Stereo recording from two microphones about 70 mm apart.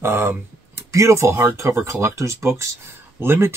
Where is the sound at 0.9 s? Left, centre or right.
Right.